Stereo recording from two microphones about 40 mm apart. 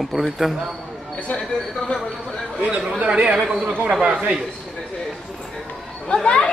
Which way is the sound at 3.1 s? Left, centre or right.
Right.